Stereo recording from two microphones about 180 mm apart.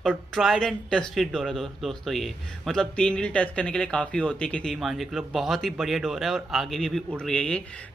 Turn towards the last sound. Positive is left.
turn(degrees=5)  # may be behind; listen again after turning